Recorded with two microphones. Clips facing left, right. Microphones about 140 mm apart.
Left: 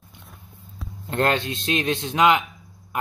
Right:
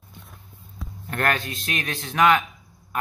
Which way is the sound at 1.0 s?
25° left (ahead or behind).